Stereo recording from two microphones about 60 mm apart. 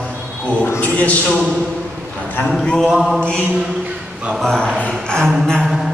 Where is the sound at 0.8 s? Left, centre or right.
Left.